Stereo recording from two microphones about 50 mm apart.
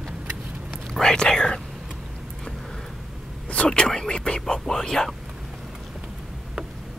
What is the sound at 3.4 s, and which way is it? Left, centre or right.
Whispering, centre.